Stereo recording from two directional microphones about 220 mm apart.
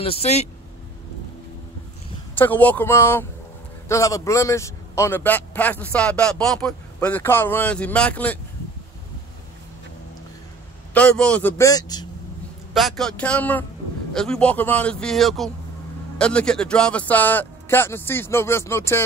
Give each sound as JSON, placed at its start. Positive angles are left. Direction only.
{"t": 0.0, "sound": "speech", "side_deg": 25}
{"t": 2.3, "sound": "a man's voice", "side_deg": 10}
{"t": 10.9, "sound": "a man's voice", "side_deg": 5}
{"t": 12.7, "sound": "a man's voice", "side_deg": 0}